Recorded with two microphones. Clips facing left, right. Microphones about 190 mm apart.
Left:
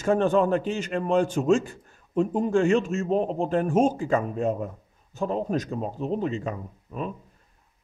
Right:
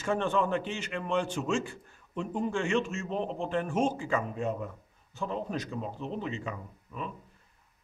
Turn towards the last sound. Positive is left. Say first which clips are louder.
# left 7 dB
turn(degrees=40)  # may be behind; listen again after turning